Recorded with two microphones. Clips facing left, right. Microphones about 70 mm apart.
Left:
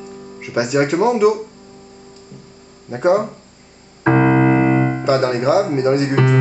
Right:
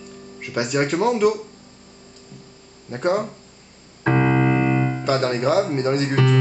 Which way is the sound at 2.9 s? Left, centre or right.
Centre.